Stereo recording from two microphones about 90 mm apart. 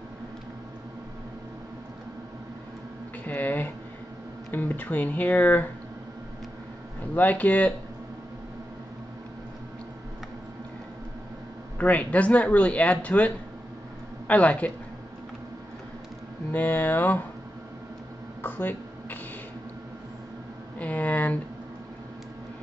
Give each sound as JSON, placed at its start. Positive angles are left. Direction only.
{"t": 3.3, "sound": "speech", "side_deg": 20}
{"t": 7.2, "sound": "speech", "side_deg": 15}
{"t": 11.8, "sound": "speech", "side_deg": 15}
{"t": 16.5, "sound": "speech", "side_deg": 20}
{"t": 18.4, "sound": "a sound", "side_deg": 20}
{"t": 20.8, "sound": "a sound", "side_deg": 15}